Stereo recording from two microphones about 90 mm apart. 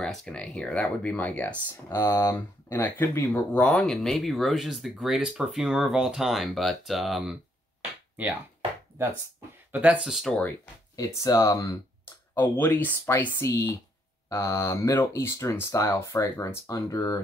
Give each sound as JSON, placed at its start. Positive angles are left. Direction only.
{"t": 0.0, "sound": "speech", "side_deg": 5}
{"t": 1.9, "sound": "speech", "side_deg": 30}
{"t": 2.3, "sound": "speech", "side_deg": 20}
{"t": 9.7, "sound": "speech", "side_deg": -15}
{"t": 10.0, "sound": "speech", "side_deg": -5}
{"t": 11.0, "sound": "speech", "side_deg": 35}
{"t": 12.1, "sound": "speech", "side_deg": 25}